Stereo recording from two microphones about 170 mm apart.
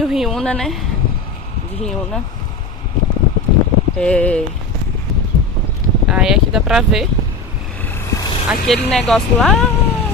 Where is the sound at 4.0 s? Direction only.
5° left (ahead or behind).